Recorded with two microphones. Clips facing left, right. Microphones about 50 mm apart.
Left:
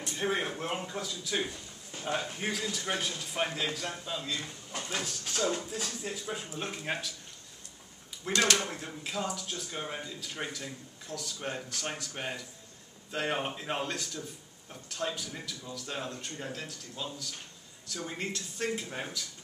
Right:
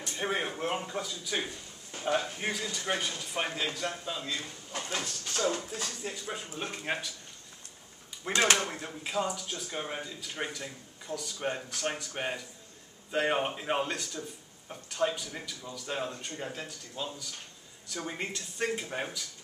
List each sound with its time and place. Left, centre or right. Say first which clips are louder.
0.1 s speech: even; centre
4.4 s speech: right 1 dB; right
4.9 s speech: even; centre
8.3 s speech: right 1 dB; right
8.5 s speech: right 1 dB; centre